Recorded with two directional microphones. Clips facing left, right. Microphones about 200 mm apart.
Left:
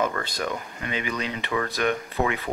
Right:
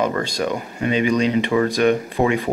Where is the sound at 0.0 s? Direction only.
20° right (ahead or behind).